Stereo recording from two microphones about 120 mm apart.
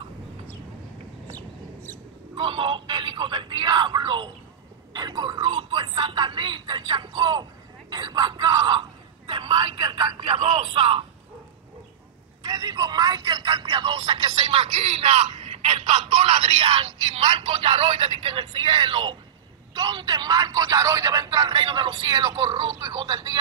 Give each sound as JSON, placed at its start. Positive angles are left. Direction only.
{"t": 1.3, "sound": "chicken", "side_deg": 15}
{"t": 2.3, "sound": "speech", "side_deg": -45}
{"t": 4.9, "sound": "a sound", "side_deg": -35}
{"t": 9.3, "sound": "telephone", "side_deg": -45}
{"t": 12.4, "sound": "telephone", "side_deg": -35}
{"t": 19.7, "sound": "a man's voice", "side_deg": -35}